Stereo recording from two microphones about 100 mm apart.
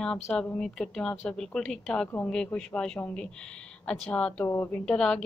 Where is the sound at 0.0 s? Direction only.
5° left (ahead or behind).